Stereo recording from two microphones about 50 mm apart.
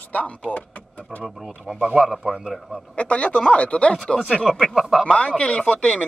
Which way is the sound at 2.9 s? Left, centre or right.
Left.